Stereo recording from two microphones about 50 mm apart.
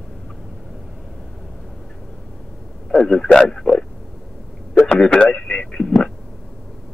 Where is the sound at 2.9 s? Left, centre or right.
Centre.